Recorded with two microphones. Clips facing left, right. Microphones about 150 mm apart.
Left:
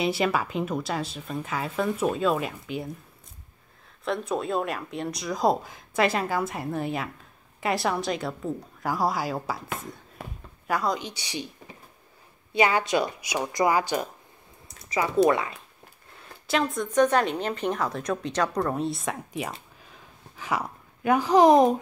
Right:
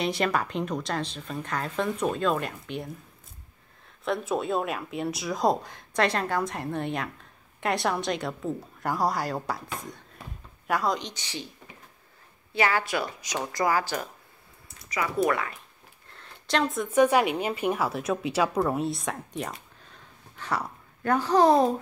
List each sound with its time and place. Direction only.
0.0 s speech: 5° left (ahead or behind)
4.0 s speech: centre (ahead or behind)
10.7 s a woman's voice: centre (ahead or behind)
12.5 s a woman's voice: 15° left (ahead or behind)
14.8 s a sound: 25° left (ahead or behind)
15.2 s speech: 20° left (ahead or behind)
16.2 s speech: 5° left (ahead or behind)
19.8 s a sound: 10° left (ahead or behind)